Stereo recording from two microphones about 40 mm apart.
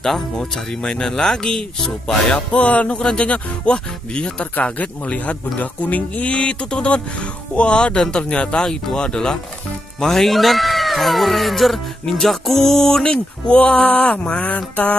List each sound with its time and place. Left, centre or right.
0.4 s speech: centre
2.5 s speech: left
4.7 s speech: left
6.3 s speech: left
9.9 s speech: centre; by 15.0 s left